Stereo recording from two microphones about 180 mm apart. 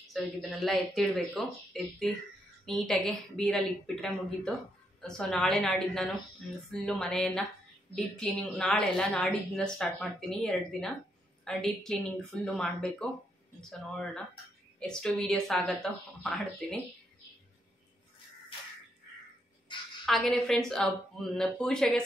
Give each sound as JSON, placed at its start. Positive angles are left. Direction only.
{"t": 0.1, "sound": "speech", "side_deg": 0}
{"t": 19.7, "sound": "a sound", "side_deg": 25}
{"t": 20.1, "sound": "speech", "side_deg": 0}